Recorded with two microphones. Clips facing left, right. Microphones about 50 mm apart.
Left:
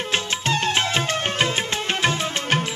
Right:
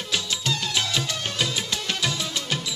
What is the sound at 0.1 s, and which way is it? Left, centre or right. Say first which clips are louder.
Music: left 3 dB; left.